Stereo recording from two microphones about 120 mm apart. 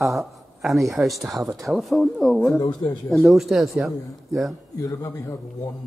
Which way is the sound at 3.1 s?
Centre (ahead or behind).